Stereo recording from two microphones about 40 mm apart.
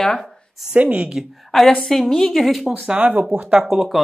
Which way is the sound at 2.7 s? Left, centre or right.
Centre.